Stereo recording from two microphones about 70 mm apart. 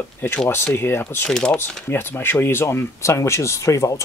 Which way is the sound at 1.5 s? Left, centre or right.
Left.